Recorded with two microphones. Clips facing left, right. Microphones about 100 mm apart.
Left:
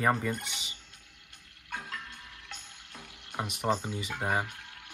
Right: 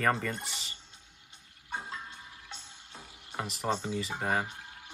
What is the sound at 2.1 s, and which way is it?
Frying, 65° left (ahead or behind).